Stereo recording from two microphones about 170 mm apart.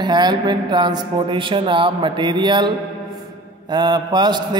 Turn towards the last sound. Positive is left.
turn(degrees=-25)  # may be behind; listen again after turning